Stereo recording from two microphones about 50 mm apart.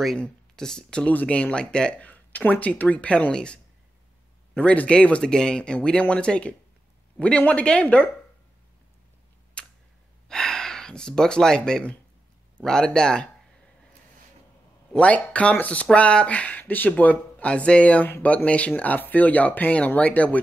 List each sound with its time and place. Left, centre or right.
0.2 s speech: centre
1.0 s speech: left
2.0 s speech: left
4.6 s speech: left
9.6 s camera: left
10.2 s speech: centre
14.9 s speech: left